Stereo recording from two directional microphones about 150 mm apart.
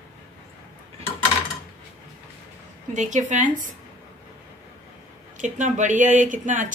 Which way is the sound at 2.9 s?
55° right (ahead or behind).